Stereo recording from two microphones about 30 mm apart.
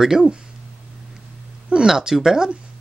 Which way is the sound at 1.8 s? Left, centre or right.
Centre.